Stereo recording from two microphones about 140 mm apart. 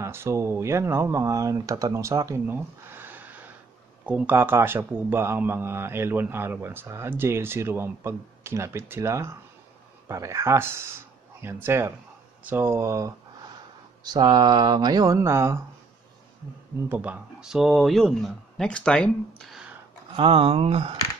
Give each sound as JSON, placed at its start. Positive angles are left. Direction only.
{"t": 0.0, "sound": "speech", "side_deg": -20}
{"t": 16.9, "sound": "speech", "side_deg": -10}
{"t": 20.2, "sound": "speech", "side_deg": -40}